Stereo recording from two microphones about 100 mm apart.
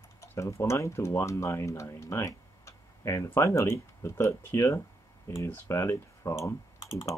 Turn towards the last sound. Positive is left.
turn(degrees=30)  # may be behind; listen again after turning